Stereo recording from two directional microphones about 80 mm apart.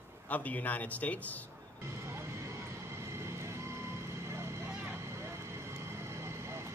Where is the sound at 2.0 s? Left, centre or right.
Right.